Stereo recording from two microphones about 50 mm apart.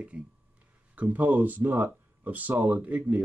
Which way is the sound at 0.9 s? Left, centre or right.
Right.